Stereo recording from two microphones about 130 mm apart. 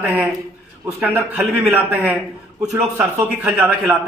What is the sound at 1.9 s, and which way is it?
A man's voice, 15° right (ahead or behind).